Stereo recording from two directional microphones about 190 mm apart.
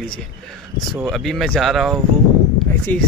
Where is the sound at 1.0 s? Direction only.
Centre (ahead or behind).